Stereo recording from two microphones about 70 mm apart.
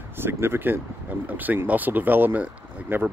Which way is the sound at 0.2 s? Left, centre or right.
Right.